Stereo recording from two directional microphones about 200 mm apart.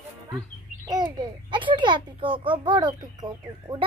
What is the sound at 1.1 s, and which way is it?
A child's voice, 25° right (ahead or behind).